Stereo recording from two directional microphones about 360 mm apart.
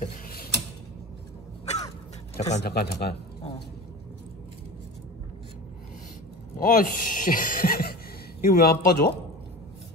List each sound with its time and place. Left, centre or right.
0.0 s mechanisms: left
2.3 s a man's voice: centre
6.6 s speech: left